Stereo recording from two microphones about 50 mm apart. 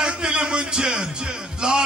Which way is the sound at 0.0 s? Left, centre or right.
Centre.